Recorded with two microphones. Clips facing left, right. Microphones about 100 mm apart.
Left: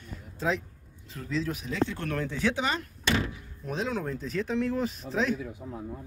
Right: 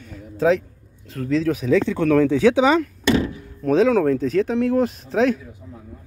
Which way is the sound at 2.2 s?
90° right.